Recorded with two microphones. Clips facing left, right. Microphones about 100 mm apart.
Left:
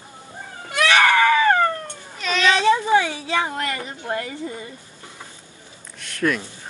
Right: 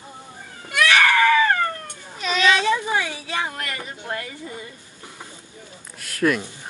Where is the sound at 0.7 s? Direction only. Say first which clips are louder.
Left 1 dB; 25° left (ahead or behind).